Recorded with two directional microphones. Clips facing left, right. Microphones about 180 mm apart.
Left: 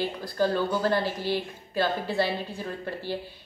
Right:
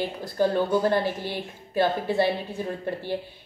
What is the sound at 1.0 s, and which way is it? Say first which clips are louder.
Speech: left 1 dB; 55° right (ahead or behind).